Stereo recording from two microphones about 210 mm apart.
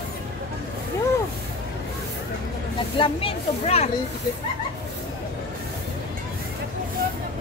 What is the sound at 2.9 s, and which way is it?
Speech, 25° left (ahead or behind).